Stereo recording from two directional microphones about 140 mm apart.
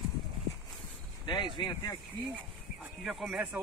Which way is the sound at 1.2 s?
30° left (ahead or behind).